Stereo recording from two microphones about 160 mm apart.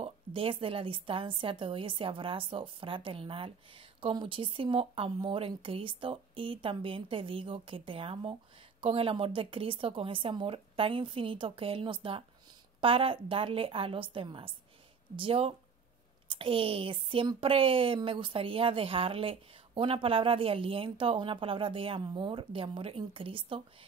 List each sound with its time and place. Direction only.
0.0 s a woman's voice: 35° right (ahead or behind)